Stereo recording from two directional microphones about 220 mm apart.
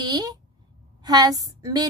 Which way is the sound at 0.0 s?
15° right (ahead or behind).